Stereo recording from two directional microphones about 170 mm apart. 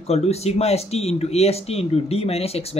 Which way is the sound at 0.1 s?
40° left (ahead or behind).